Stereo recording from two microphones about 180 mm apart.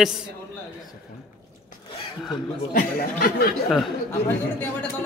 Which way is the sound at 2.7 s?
55° left (ahead or behind).